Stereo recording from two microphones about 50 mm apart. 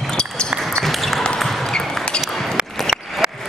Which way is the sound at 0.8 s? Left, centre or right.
Centre.